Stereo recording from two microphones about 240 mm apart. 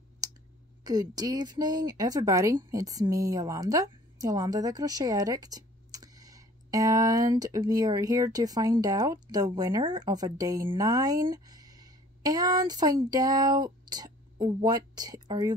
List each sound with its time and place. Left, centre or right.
0.8 s speech: centre